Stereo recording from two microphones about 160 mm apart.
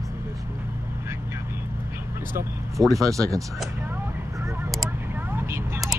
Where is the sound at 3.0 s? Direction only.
20° right (ahead or behind).